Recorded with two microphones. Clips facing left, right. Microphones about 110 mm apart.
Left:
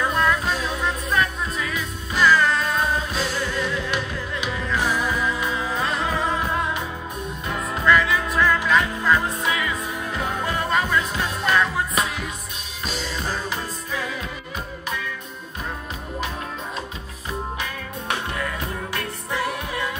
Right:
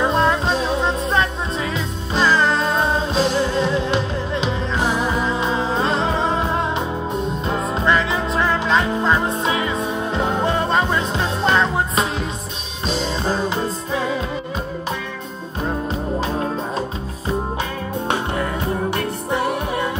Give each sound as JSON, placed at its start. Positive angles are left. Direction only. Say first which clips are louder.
{"t": 0.0, "sound": "music", "louder": "right 4 dB", "side_deg": -25}
{"t": 18.1, "sound": "music", "louder": "right 3 dB", "side_deg": -30}